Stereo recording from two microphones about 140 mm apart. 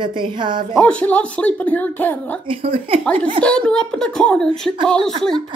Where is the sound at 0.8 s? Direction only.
10° left (ahead or behind).